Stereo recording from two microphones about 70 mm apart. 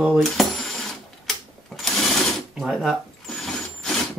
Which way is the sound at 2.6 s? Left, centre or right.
Centre.